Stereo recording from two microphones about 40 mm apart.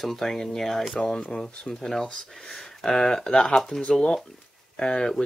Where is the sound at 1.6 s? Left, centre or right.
Left.